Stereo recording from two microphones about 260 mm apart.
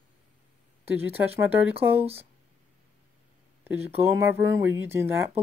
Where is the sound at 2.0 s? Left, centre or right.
Right.